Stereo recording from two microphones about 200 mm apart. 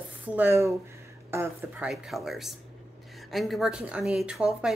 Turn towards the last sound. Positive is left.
turn(degrees=-5)  # may be behind; listen again after turning